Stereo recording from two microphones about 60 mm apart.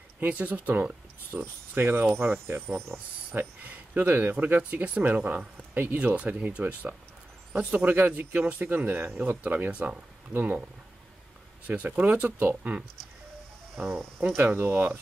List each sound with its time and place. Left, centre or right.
0.3 s speech: right
1.8 s speech: right
3.3 s speech: right
4.6 s speech: right
11.6 s speech: right
13.8 s speech: centre
14.2 s speech: right